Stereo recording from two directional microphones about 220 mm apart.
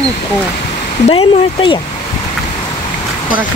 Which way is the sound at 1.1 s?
25° left (ahead or behind).